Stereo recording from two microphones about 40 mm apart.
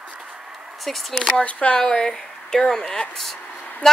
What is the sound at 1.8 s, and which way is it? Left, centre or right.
A woman's voice, centre.